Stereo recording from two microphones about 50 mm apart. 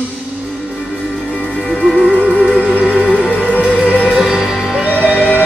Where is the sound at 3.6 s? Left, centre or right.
Right.